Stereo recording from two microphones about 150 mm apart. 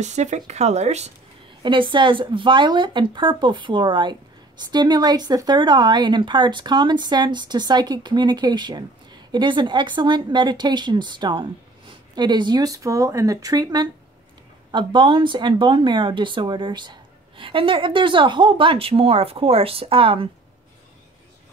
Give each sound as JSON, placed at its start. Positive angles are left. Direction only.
{"t": 0.0, "sound": "speech", "side_deg": -50}
{"t": 1.6, "sound": "a woman's voice", "side_deg": -35}